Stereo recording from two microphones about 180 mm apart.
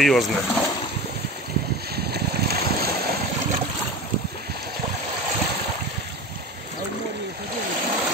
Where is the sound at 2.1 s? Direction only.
65° right (ahead or behind).